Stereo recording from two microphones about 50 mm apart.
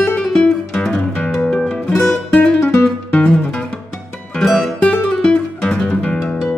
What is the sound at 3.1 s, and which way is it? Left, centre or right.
Music, left.